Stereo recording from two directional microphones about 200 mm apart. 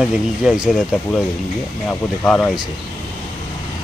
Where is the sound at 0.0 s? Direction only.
5° right (ahead or behind).